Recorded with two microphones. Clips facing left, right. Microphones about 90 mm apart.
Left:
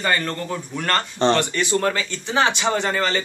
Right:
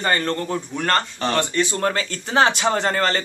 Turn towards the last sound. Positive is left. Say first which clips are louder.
# right 1 dB
turn(degrees=-45)  # may be behind; listen again after turning